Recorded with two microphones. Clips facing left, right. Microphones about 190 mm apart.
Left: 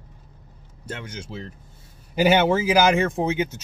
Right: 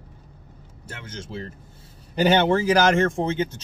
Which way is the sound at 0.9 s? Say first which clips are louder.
Left 5 dB; 15° left (ahead or behind).